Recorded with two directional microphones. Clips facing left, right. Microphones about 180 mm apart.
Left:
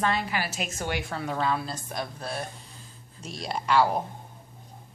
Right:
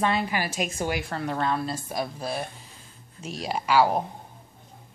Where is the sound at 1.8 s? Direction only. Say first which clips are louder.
Right 4 dB; 10° right (ahead or behind).